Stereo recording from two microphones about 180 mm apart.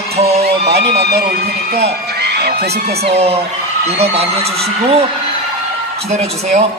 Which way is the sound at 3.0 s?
35° right (ahead or behind).